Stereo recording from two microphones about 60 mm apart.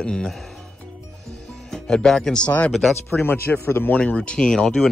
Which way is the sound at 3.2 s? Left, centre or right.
Left.